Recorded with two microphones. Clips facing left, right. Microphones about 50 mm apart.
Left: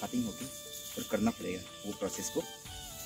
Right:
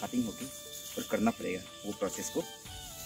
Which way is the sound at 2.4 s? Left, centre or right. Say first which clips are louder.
Even; centre.